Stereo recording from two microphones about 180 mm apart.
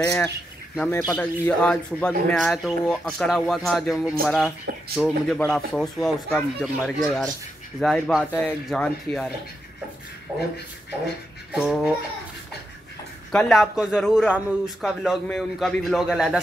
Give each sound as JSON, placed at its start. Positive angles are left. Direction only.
{"t": 0.0, "sound": "a man's voice", "side_deg": 20}
{"t": 11.5, "sound": "a man's voice", "side_deg": -5}
{"t": 13.3, "sound": "a man's voice", "side_deg": 5}